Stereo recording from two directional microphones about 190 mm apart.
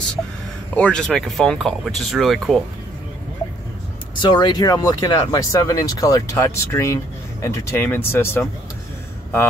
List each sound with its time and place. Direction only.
0.7 s speech: 5° left (ahead or behind)
4.2 s speech: 25° left (ahead or behind)